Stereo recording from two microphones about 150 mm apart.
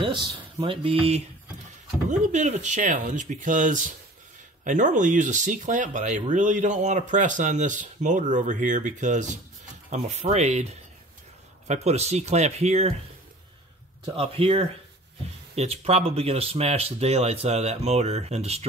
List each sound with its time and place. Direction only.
0.0 s speech: 30° right (ahead or behind)
2.0 s speech: 55° right (ahead or behind)
14.0 s speech: 40° right (ahead or behind)